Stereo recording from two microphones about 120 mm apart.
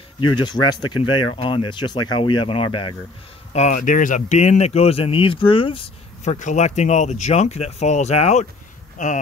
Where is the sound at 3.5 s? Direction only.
80° left; by 5.9 s 45° left (ahead or behind).